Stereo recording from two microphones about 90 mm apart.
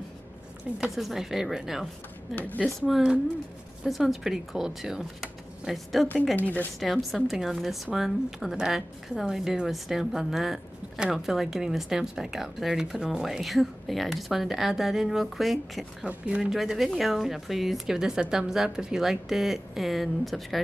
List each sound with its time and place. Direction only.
0.7 s speech: centre (ahead or behind)
2.3 s a woman's voice: 20° left (ahead or behind)
2.9 s speech: 10° right (ahead or behind)
6.3 s a woman's voice: 20° left (ahead or behind)
6.8 s speech: centre (ahead or behind)
16.0 s speech: 10° right (ahead or behind)